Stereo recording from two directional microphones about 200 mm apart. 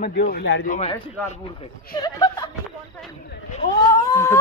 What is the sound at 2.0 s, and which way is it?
Speech, 20° left (ahead or behind).